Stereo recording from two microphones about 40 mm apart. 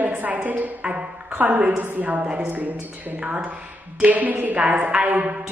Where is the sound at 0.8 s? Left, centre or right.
Right.